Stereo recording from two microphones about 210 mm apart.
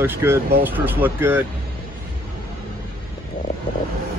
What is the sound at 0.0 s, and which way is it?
Speech, 10° right (ahead or behind).